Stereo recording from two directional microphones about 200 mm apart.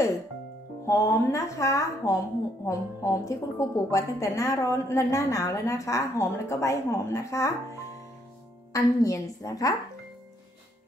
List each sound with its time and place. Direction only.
0.8 s a woman's voice: 15° left (ahead or behind)
8.7 s a woman's voice: 15° left (ahead or behind)